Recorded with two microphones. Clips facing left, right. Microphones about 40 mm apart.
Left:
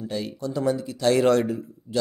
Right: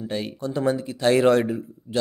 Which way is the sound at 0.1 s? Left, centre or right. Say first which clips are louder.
Right 1 dB; right.